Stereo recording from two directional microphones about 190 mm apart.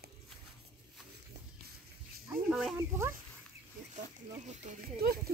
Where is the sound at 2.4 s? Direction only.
5° right (ahead or behind).